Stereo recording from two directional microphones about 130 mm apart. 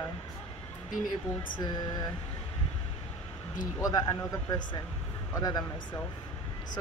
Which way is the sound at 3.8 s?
30° left (ahead or behind).